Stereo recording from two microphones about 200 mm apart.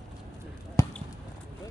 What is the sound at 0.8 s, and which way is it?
Basketball bounce, 15° left (ahead or behind).